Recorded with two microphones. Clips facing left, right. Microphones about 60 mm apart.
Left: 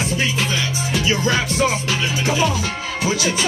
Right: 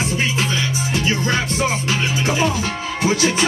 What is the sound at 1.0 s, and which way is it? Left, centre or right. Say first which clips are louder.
Music: left 2 dB; right.